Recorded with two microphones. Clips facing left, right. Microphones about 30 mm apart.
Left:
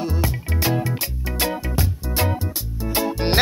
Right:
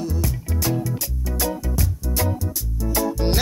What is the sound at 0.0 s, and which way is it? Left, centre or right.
Music, left.